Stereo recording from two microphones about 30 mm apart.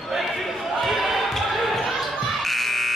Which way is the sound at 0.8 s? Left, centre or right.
Centre.